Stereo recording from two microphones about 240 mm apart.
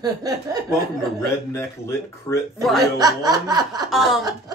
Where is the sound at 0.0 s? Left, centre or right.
Centre.